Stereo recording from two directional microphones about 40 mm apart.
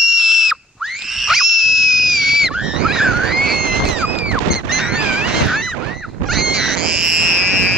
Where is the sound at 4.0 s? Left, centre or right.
Right.